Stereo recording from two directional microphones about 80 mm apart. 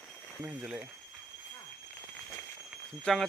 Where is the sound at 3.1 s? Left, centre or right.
Centre.